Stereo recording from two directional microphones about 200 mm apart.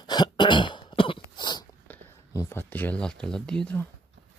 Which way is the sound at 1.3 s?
20° left (ahead or behind).